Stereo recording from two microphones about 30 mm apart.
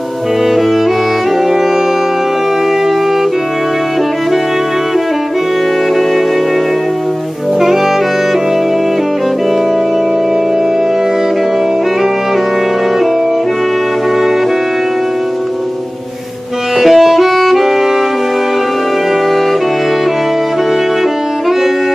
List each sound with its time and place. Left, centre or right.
16.8 s music: centre